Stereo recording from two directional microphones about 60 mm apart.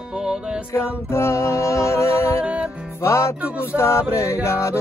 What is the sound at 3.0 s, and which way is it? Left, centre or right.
Music, left.